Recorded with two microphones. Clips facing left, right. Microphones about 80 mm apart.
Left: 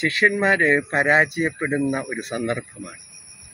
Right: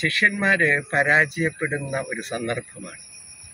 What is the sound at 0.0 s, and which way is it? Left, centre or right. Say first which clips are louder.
Speech: left 2 dB; centre.